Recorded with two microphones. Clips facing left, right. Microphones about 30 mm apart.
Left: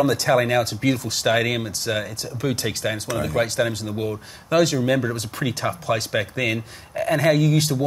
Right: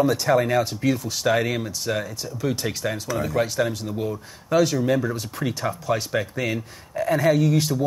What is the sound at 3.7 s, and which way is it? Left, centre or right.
Speech, left.